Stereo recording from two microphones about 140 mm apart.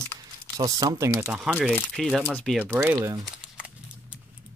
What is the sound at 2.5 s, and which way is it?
Speech, 15° right (ahead or behind).